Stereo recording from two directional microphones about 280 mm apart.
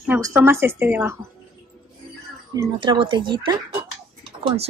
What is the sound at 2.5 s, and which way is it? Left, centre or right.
Speech, centre.